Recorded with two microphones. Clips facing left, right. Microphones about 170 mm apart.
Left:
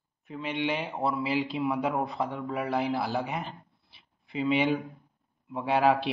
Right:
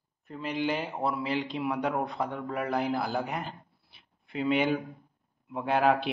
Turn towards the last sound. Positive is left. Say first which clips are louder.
# left 1 dB
turn(degrees=0)  # may be behind; listen again after turning